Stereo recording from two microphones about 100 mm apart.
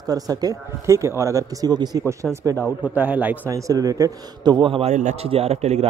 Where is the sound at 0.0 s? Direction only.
40° right (ahead or behind).